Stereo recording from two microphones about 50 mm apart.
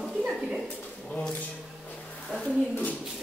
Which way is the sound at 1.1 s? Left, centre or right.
Left.